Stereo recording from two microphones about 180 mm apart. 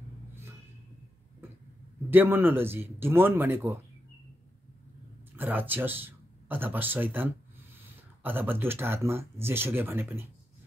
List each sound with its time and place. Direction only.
2.0 s speech: 10° right (ahead or behind)
5.3 s speech: 10° right (ahead or behind)